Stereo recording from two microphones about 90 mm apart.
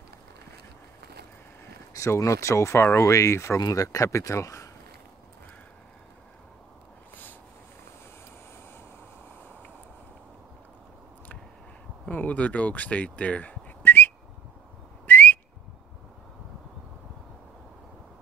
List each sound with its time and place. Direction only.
2.0 s speech: 35° left (ahead or behind)
12.1 s a sound: 20° left (ahead or behind)
15.0 s whistle: 20° left (ahead or behind)